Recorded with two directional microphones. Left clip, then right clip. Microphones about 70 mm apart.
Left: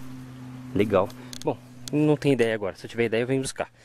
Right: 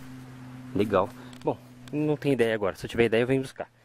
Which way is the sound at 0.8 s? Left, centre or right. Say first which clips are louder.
Left 2 dB; centre.